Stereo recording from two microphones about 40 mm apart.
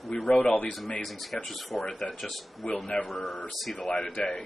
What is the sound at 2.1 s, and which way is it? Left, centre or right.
Speech, centre.